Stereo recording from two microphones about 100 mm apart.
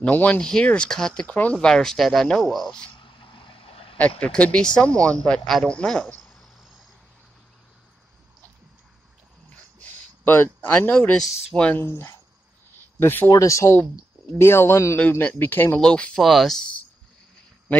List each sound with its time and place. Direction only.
0.0 s speech: 15° left (ahead or behind)
3.0 s a sound: 55° left (ahead or behind)
4.2 s speech: 10° left (ahead or behind)
10.2 s speech: 20° left (ahead or behind)
11.8 s speech: 25° left (ahead or behind)
13.3 s speech: 30° left (ahead or behind)
15.8 s speech: 10° left (ahead or behind)